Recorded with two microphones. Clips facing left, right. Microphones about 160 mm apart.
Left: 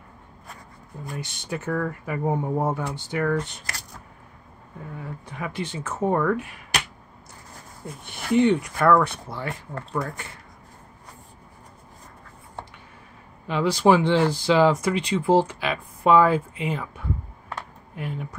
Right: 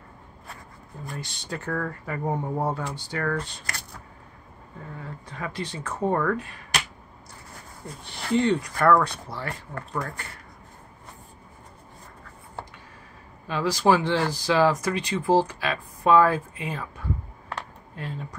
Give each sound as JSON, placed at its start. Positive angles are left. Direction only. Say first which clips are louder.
{"t": 1.1, "sound": "speech", "louder": "left 3 dB", "side_deg": 20}
{"t": 4.9, "sound": "speech", "louder": "left 3 dB", "side_deg": 15}
{"t": 8.0, "sound": "speech", "louder": "left 4 dB", "side_deg": 15}
{"t": 9.3, "sound": "speech", "louder": "left 2 dB", "side_deg": 20}
{"t": 13.5, "sound": "speech", "louder": "left 3 dB", "side_deg": 20}
{"t": 17.5, "sound": "a sound", "louder": "right 1 dB", "side_deg": 15}